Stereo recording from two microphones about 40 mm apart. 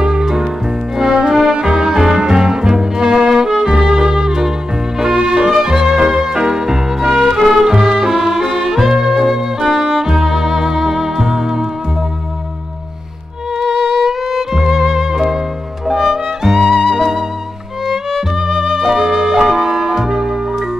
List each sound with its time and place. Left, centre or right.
0.0 s music: centre
13.6 s music: centre
18.5 s music: centre